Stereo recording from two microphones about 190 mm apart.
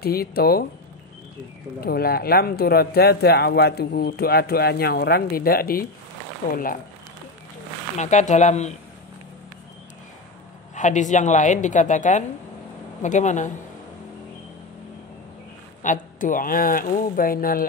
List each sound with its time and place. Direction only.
0.0 s speech: 55° left (ahead or behind)
1.8 s speech: 55° left (ahead or behind)
8.0 s a woman's voice: 40° left (ahead or behind)
10.7 s a woman's voice: 40° left (ahead or behind)
15.8 s speech: 45° left (ahead or behind)